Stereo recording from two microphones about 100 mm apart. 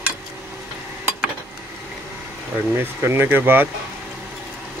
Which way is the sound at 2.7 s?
25° right (ahead or behind).